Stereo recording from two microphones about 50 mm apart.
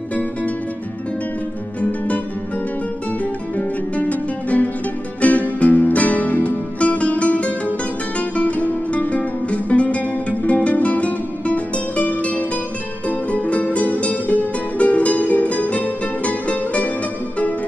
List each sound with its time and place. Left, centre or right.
0.1 s music: left
1.8 s music: left